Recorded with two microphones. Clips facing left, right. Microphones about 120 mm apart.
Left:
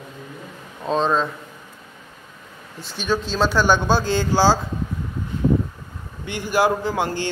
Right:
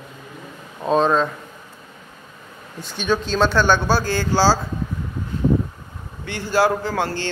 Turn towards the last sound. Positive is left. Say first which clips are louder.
# even
turn(degrees=15)  # may be behind; listen again after turning